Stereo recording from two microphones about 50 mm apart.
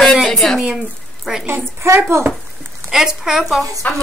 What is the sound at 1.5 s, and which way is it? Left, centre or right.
Speech, right.